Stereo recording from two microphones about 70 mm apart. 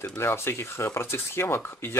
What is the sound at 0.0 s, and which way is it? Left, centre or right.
Speech, left.